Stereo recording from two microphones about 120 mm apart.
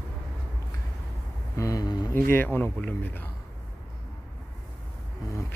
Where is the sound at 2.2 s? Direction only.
15° left (ahead or behind).